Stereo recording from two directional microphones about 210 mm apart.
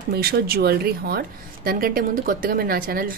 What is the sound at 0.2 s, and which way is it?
A woman's voice, 50° right (ahead or behind).